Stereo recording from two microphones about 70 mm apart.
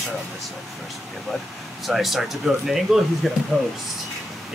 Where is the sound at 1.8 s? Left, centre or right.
Centre.